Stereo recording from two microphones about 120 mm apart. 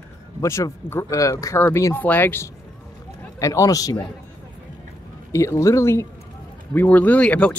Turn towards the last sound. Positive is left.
turn(degrees=10)  # may be behind; listen again after turning